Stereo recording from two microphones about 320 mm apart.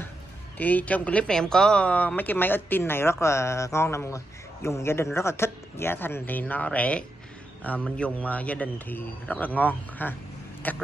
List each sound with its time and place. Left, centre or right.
0.6 s a man's voice: centre